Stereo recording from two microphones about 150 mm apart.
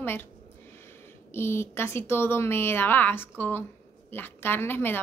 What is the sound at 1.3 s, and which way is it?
A woman's voice, 15° left (ahead or behind).